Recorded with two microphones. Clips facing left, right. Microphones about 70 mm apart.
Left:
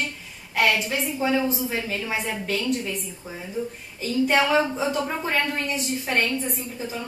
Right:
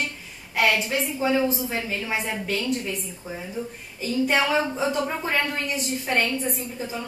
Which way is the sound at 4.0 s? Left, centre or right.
Centre.